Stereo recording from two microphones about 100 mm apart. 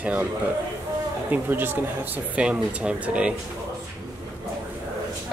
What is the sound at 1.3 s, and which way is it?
Speech, 20° right (ahead or behind).